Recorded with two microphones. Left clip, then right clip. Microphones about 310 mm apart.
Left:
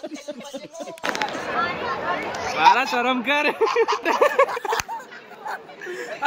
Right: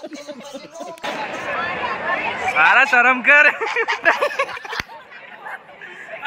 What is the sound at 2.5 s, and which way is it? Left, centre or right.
Speech, centre.